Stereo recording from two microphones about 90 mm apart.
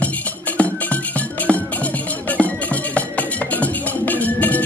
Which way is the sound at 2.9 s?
15° left (ahead or behind).